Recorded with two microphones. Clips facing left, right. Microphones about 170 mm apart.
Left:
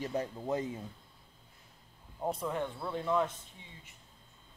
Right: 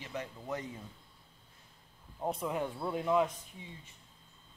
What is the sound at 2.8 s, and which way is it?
Speech, 20° right (ahead or behind).